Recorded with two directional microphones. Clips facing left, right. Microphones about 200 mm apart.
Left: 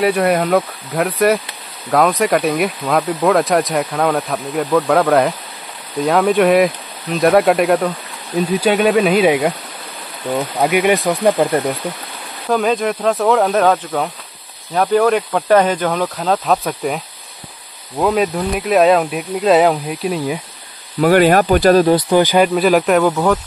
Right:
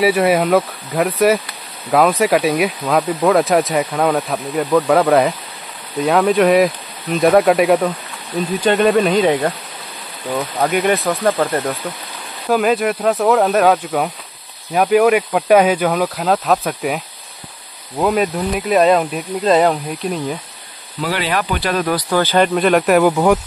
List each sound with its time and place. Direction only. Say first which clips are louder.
0.0 s speech: right 1 dB; 5° right (ahead or behind); by 11.7 s 15° left (ahead or behind)
12.4 s speech: right 1 dB; 5° right (ahead or behind)
21.0 s speech: left 9 dB; 50° left (ahead or behind)
21.8 s speech: left 5 dB; 20° left (ahead or behind)
22.5 s speech: even; centre (ahead or behind)
23.0 s speech: right 2 dB; 15° right (ahead or behind)